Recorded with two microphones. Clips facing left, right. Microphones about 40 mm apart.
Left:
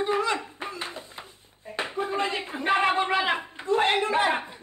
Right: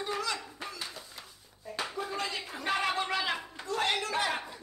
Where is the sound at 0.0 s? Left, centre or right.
Left.